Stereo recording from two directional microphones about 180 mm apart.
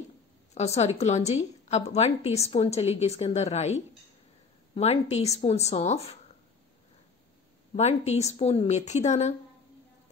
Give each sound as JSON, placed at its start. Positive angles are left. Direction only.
{"t": 0.6, "sound": "a woman's voice", "side_deg": 35}
{"t": 7.7, "sound": "a woman's voice", "side_deg": 35}